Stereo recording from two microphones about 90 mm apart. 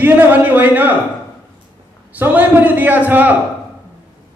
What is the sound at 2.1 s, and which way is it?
Speech, 20° right (ahead or behind).